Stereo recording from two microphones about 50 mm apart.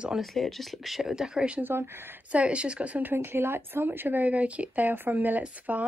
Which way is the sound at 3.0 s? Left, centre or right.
Right.